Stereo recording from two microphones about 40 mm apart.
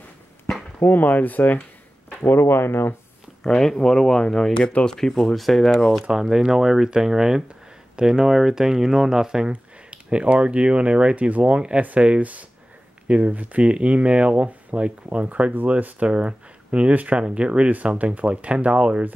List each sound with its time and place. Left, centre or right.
0.8 s speech: left
2.3 s speech: left
3.4 s speech: centre
6.3 s speech: centre
9.5 s speech: right
13.6 s speech: right
16.1 s speech: right
16.9 s speech: right
17.2 s speech: right